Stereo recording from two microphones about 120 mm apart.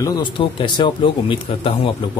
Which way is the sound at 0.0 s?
30° left (ahead or behind).